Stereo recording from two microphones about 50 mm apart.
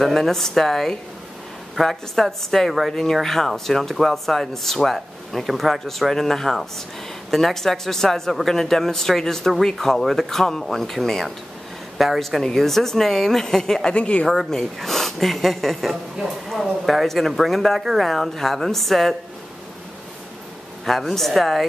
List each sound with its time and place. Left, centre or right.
0.0 s a man's voice: centre
13.9 s a woman's voice: left
14.2 s speech: centre
20.8 s speech: centre